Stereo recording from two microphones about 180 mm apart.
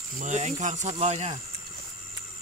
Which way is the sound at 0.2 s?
40° right (ahead or behind).